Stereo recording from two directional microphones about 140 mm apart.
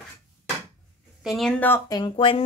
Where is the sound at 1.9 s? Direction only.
30° left (ahead or behind).